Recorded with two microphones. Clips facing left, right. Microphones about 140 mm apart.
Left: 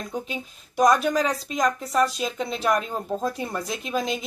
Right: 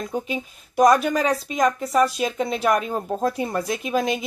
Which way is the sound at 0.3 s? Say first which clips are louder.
Right 5 dB; 5° right (ahead or behind).